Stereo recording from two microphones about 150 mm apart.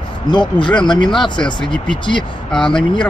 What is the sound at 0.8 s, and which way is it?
Speech, 30° left (ahead or behind).